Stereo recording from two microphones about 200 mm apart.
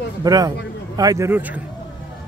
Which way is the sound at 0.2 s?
20° right (ahead or behind).